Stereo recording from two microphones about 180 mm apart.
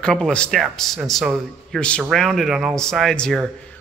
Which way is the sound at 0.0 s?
5° left (ahead or behind).